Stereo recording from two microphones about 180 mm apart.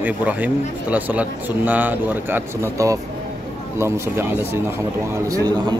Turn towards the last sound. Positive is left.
turn(degrees=-20)  # may be behind; listen again after turning